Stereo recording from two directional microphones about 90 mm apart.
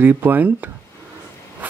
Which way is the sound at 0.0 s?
20° right (ahead or behind).